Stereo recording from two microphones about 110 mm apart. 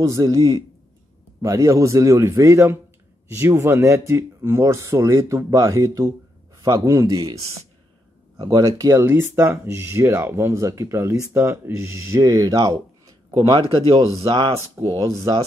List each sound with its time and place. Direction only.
0.0 s speech: 30° right (ahead or behind)
13.6 s speech: 50° right (ahead or behind)
15.0 s speech: 30° right (ahead or behind)